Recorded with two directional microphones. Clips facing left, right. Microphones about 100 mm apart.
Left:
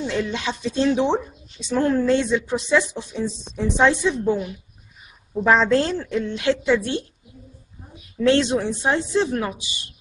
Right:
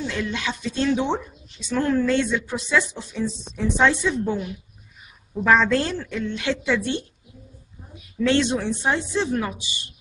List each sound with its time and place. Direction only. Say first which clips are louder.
0.0 s a woman's voice: left 3 dB; 20° left (ahead or behind)
8.2 s a woman's voice: left 2 dB; 15° left (ahead or behind)